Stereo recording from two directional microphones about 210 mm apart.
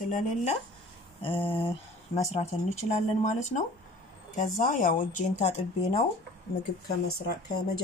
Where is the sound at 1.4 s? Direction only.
10° left (ahead or behind).